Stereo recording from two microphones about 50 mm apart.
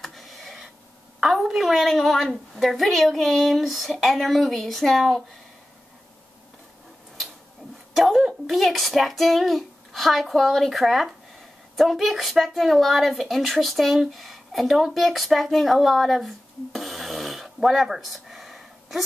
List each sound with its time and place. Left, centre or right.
0.0 s a sound: centre
1.2 s a woman's voice: centre
1.7 s speech: centre
7.9 s speech: centre